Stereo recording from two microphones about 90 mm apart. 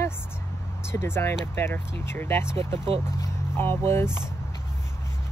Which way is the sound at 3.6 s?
25° left (ahead or behind).